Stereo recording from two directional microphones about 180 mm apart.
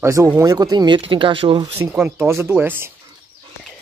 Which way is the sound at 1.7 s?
10° right (ahead or behind).